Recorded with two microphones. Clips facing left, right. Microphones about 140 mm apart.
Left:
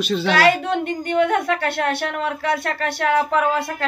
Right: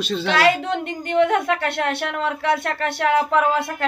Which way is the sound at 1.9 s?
15° left (ahead or behind).